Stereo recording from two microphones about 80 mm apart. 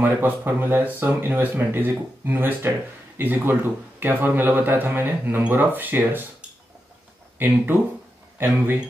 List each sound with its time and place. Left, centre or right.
0.0 s speech: right
7.3 s speech: right